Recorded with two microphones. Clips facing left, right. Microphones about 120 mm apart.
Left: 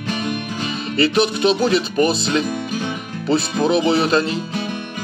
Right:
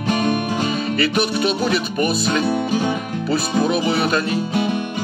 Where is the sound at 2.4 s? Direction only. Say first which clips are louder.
Right 5 dB; 30° right (ahead or behind).